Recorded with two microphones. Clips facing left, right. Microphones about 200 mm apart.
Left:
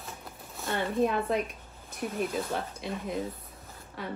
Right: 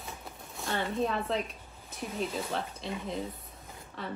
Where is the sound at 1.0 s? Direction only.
10° left (ahead or behind).